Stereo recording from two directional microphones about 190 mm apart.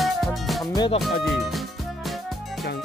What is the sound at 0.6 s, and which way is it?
Music, 20° left (ahead or behind).